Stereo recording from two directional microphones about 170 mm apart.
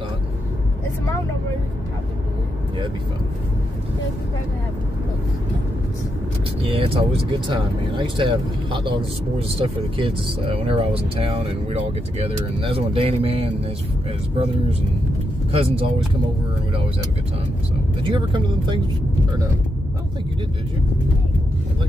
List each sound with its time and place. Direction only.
6.7 s speech: 35° right (ahead or behind)
15.5 s speech: 35° right (ahead or behind)
18.0 s speech: 25° right (ahead or behind)